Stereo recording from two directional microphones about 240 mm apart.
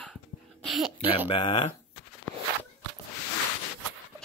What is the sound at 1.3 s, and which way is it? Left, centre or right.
Speech, left.